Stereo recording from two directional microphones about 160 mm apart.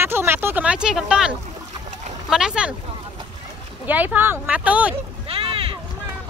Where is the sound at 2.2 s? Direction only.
5° right (ahead or behind).